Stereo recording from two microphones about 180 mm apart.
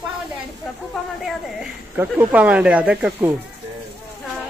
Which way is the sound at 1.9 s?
10° right (ahead or behind).